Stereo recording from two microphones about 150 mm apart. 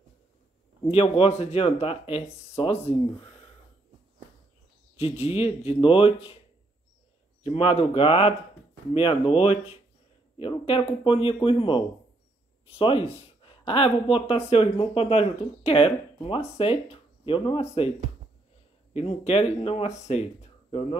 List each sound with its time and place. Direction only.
0.8 s speech: 40° left (ahead or behind)
4.9 s speech: 40° left (ahead or behind)
7.4 s speech: 40° left (ahead or behind)
18.9 s speech: 40° left (ahead or behind)